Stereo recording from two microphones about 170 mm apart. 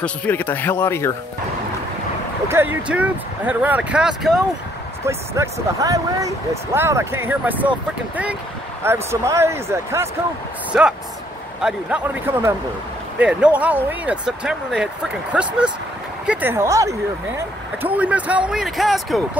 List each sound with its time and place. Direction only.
0.0 s a man's voice: 10° left (ahead or behind)
2.4 s speech: 15° right (ahead or behind)
5.0 s speech: 15° right (ahead or behind)
8.8 s speech: 15° right (ahead or behind)
17.9 s speech: 10° right (ahead or behind)